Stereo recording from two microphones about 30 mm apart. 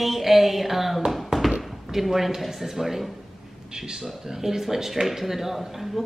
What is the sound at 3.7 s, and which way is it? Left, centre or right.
Speech, right.